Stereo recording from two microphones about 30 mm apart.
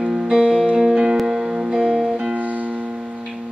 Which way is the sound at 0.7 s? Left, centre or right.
Centre.